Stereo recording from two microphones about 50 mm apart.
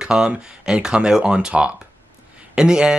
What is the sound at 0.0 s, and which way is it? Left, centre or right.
Speech, centre.